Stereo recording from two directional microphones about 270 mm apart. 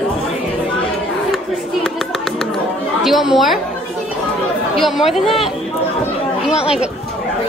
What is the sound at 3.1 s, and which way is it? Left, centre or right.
Speech, centre.